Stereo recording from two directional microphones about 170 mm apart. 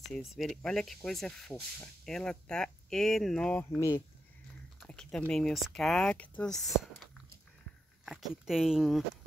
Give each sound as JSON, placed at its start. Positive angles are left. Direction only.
{"t": 0.1, "sound": "speech", "side_deg": 0}